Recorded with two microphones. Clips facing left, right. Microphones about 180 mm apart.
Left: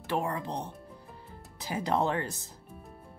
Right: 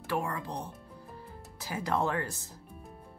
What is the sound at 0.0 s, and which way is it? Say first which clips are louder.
Speech: left 2 dB; 20° left (ahead or behind).